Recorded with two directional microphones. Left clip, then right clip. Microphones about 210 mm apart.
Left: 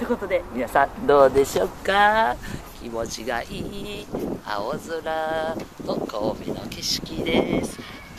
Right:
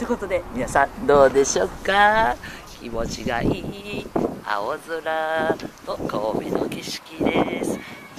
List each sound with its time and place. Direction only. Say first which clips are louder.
0.0 s speech: even; centre (ahead or behind)